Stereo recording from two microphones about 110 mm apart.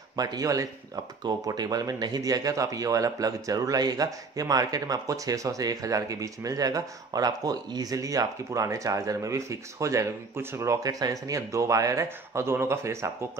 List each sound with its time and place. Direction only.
0.1 s speech: 35° right (ahead or behind)